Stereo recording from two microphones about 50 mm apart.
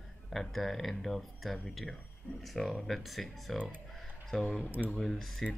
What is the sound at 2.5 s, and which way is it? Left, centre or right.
Speech, centre.